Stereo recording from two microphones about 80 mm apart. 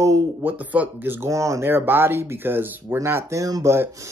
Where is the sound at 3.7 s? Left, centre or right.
Right.